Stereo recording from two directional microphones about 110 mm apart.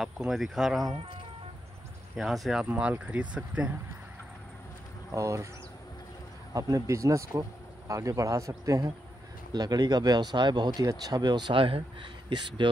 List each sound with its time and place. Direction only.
0.0 s speech: centre (ahead or behind)
2.1 s speech: centre (ahead or behind)
2.6 s speech: 15° right (ahead or behind)
5.1 s speech: 30° right (ahead or behind)
6.5 s speech: 30° right (ahead or behind); by 11.8 s 55° right (ahead or behind)